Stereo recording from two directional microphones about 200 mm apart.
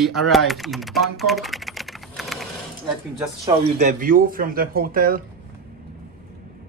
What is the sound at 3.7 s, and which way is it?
Speech, 45° right (ahead or behind).